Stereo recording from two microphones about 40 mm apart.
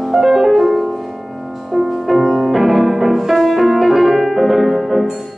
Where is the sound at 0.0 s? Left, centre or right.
Centre.